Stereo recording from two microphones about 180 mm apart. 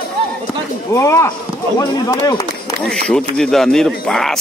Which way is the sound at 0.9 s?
15° left (ahead or behind).